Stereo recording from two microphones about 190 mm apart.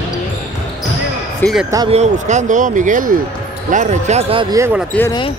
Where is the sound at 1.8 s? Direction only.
35° right (ahead or behind).